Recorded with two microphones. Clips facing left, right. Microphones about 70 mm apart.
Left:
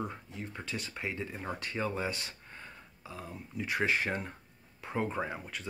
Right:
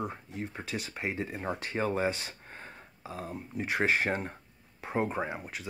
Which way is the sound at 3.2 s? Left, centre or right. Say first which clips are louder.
Right 4 dB; right.